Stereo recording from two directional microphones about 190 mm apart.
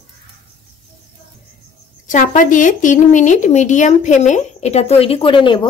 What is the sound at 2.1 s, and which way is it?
Speech, 40° left (ahead or behind).